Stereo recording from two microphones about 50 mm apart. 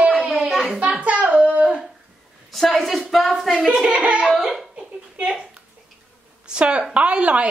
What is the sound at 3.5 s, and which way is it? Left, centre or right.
Speech, centre.